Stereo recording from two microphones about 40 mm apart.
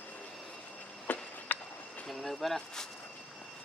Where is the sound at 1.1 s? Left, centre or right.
Left.